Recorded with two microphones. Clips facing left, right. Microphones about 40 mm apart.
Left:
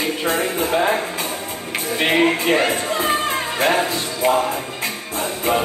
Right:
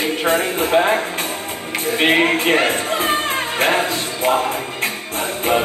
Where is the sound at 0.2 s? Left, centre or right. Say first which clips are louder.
Right 4 dB; right.